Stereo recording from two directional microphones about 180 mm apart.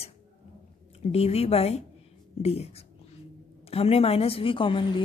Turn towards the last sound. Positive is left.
turn(degrees=30)  # may be behind; listen again after turning